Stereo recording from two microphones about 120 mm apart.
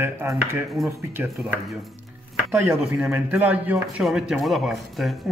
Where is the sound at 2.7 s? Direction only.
5° right (ahead or behind).